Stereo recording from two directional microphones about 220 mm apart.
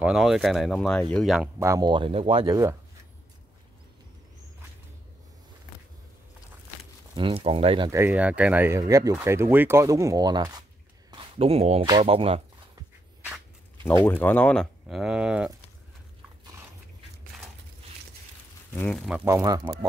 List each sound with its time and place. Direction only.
0.0 s speech: centre (ahead or behind)
1.6 s speech: 15° right (ahead or behind)
7.2 s speech: 25° right (ahead or behind)
7.9 s speech: 10° right (ahead or behind); by 12.4 s 25° right (ahead or behind)
14.0 s speech: 10° left (ahead or behind)
18.8 s speech: 5° left (ahead or behind); by 19.9 s 15° right (ahead or behind)